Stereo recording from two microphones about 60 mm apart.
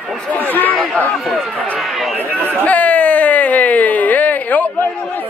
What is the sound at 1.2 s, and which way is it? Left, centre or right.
Run, centre.